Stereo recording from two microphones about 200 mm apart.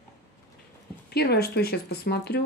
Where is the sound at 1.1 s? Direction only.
50° left (ahead or behind).